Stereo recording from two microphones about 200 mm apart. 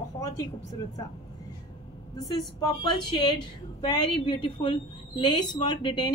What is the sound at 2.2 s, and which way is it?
A woman's voice, 20° left (ahead or behind).